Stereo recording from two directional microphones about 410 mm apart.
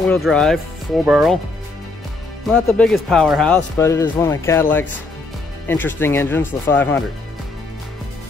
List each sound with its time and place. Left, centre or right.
0.0 s speech: centre
2.5 s speech: centre